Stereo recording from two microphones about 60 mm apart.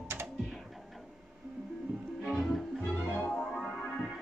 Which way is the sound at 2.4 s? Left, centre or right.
Centre.